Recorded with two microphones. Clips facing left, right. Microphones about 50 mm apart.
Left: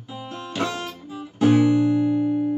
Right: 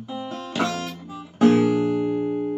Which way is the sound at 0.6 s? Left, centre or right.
Centre.